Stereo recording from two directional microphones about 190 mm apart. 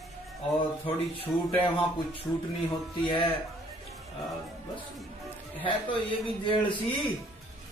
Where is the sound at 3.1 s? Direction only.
25° left (ahead or behind).